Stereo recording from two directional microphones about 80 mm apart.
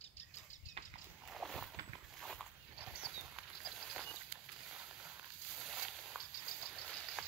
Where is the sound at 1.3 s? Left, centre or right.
Centre.